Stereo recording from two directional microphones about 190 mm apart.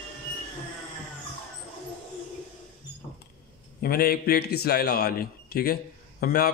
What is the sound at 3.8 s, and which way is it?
A man's voice, 50° left (ahead or behind).